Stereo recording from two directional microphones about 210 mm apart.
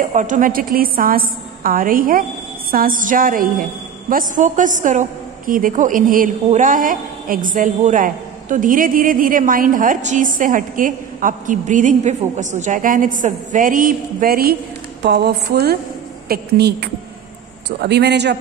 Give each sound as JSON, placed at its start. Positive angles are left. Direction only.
{"t": 0.0, "sound": "a woman's voice", "side_deg": -35}